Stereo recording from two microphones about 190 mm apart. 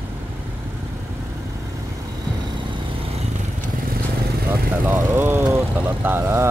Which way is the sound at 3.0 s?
35° right (ahead or behind).